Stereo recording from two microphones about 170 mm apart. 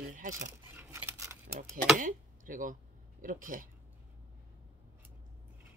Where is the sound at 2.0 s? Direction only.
50° right (ahead or behind).